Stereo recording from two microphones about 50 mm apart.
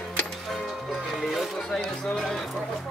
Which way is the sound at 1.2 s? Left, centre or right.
Centre.